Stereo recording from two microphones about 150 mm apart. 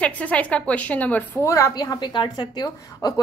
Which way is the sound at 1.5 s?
25° left (ahead or behind).